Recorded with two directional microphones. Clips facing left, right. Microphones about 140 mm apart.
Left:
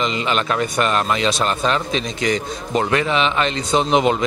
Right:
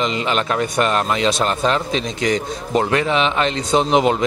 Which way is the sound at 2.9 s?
30° right (ahead or behind).